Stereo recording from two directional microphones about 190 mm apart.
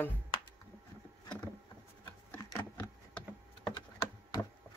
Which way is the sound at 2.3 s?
10° left (ahead or behind).